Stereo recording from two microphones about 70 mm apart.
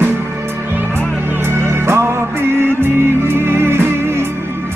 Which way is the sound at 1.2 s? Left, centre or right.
Right.